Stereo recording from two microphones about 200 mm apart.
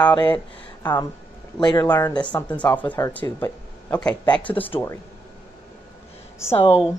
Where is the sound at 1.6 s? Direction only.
20° left (ahead or behind).